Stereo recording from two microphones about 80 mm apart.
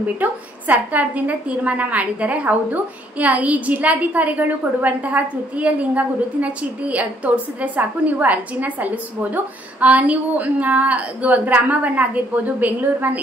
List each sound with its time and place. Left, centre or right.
0.0 s a woman's voice: right